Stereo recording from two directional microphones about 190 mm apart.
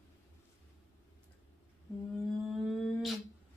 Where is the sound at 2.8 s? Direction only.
Centre (ahead or behind).